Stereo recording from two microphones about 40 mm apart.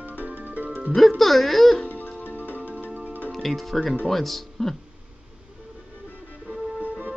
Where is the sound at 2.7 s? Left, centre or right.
Right.